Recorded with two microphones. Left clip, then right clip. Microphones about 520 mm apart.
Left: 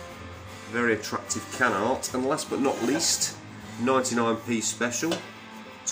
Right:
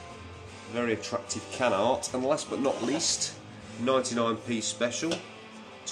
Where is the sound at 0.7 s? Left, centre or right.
Right.